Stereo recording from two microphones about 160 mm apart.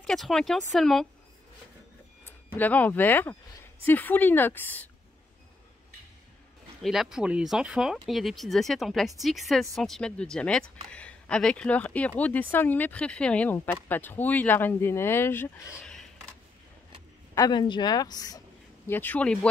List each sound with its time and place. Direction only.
0.0 s speech: centre (ahead or behind)
2.2 s speech: 10° left (ahead or behind)
6.8 s speech: centre (ahead or behind)
17.4 s speech: 30° left (ahead or behind)
18.9 s speech: 10° left (ahead or behind)